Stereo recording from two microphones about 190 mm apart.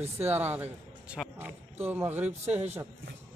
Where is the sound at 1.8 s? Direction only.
10° right (ahead or behind).